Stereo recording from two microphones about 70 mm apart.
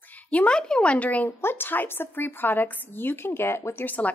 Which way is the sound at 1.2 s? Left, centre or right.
Left.